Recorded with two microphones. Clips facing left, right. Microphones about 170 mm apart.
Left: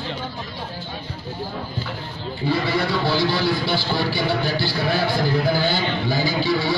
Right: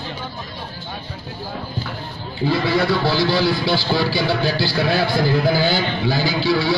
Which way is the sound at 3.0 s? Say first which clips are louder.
Right 2 dB; 90° right.